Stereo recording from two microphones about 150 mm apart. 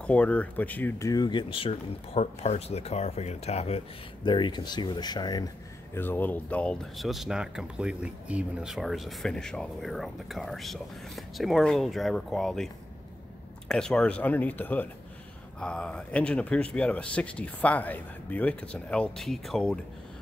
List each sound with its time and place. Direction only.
0.0 s speech: 10° left (ahead or behind); by 3.8 s 45° left (ahead or behind)
4.2 s speech: 30° left (ahead or behind)
5.9 s speech: 15° left (ahead or behind)
13.7 s speech: 5° left (ahead or behind)